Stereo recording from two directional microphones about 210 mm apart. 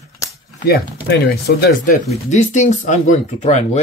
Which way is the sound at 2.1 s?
35° left (ahead or behind).